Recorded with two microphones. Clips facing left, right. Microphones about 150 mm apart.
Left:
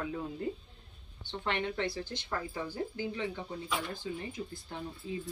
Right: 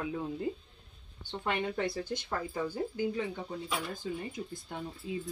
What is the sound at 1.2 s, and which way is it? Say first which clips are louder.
Speech: right 1 dB; 10° right (ahead or behind).